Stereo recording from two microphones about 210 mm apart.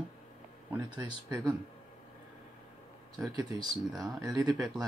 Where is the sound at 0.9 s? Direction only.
15° right (ahead or behind).